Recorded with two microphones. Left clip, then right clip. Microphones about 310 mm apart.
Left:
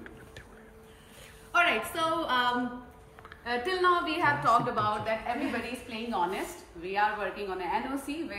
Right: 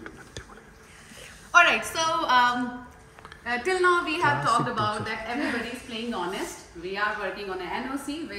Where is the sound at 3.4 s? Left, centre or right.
Centre.